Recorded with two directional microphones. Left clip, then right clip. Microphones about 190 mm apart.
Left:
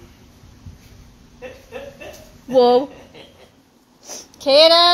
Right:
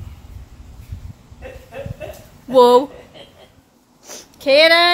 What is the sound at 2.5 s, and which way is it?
Speech, 15° right (ahead or behind).